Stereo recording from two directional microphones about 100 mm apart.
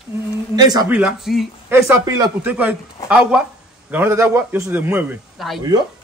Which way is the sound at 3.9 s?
25° right (ahead or behind).